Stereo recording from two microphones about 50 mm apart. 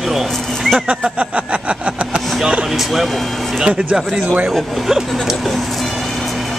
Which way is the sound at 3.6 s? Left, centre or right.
Centre.